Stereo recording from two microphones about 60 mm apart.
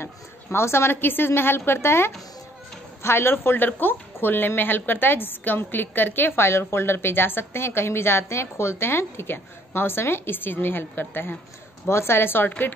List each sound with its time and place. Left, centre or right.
0.0 s a woman's voice: left